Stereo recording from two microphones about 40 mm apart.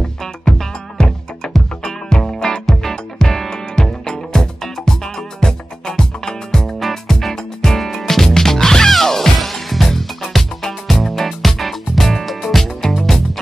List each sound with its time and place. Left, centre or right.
0.2 s music: centre